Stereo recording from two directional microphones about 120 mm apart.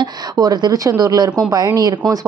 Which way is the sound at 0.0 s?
35° right (ahead or behind).